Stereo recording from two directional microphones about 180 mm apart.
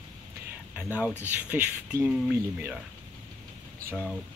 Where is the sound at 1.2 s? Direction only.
10° right (ahead or behind).